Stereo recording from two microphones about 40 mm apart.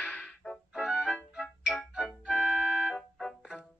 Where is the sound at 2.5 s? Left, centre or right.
Left.